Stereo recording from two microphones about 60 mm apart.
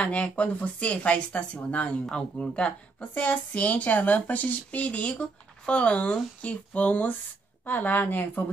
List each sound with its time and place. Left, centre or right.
0.0 s a woman's voice: left